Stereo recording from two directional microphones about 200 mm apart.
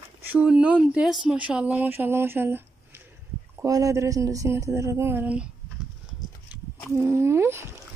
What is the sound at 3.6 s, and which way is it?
Speech, 15° right (ahead or behind).